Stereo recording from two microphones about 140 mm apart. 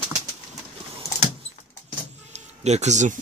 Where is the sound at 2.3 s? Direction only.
55° right (ahead or behind).